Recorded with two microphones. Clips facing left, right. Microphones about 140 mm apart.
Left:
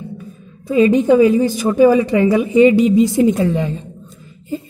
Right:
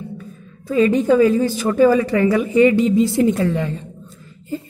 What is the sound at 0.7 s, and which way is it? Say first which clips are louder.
A woman's voice: left 3 dB; 15° left (ahead or behind).